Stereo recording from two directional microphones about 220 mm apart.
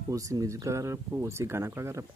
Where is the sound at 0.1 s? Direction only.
15° right (ahead or behind).